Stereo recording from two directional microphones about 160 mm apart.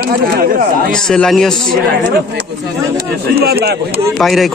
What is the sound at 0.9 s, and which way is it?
Speech, 5° left (ahead or behind).